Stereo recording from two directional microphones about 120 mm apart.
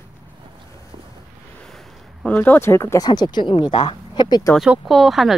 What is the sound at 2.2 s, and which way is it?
Speech, 15° left (ahead or behind).